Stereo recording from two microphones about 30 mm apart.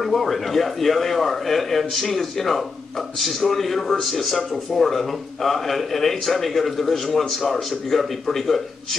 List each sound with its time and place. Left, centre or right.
0.0 s a man's voice: centre